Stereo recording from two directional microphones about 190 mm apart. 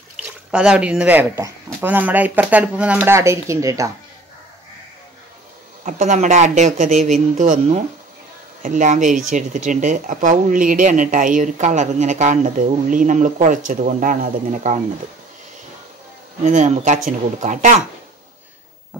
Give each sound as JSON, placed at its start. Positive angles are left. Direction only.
{"t": 0.5, "sound": "speech", "side_deg": -5}
{"t": 5.9, "sound": "speech", "side_deg": -40}
{"t": 16.4, "sound": "speech", "side_deg": -40}